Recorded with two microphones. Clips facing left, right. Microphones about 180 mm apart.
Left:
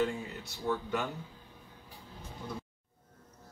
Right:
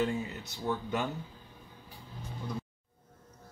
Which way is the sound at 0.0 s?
20° right (ahead or behind).